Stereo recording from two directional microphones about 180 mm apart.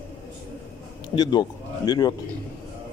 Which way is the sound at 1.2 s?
20° left (ahead or behind).